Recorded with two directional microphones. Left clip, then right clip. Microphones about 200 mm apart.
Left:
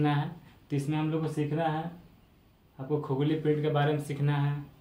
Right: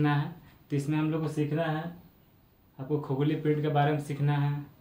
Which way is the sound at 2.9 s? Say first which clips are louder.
Even; 10° left (ahead or behind).